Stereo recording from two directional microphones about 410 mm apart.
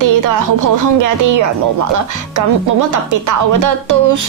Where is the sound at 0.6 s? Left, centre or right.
Right.